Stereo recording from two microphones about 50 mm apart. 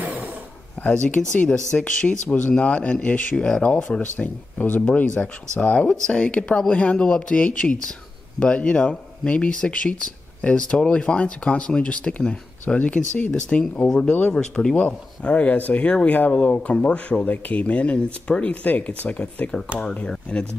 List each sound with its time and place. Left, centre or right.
0.0 s a sound: right
0.8 s a sound: left
1.2 s speech: centre
1.8 s speech: left
2.2 s speech: left
2.5 s speech: left
4.0 s speech: left
13.3 s speech: centre
13.9 s speech: left
14.3 s speech: centre
14.8 s speech: left